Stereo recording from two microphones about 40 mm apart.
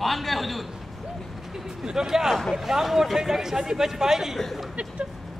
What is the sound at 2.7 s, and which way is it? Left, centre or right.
A man's voice, centre.